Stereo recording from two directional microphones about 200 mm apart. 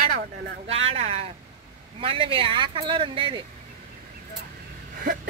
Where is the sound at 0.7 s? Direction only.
30° right (ahead or behind).